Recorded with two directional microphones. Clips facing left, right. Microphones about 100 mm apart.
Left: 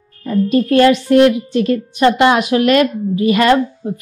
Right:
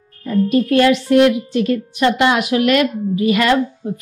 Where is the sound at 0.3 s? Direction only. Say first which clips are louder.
Left 1 dB; 35° left (ahead or behind).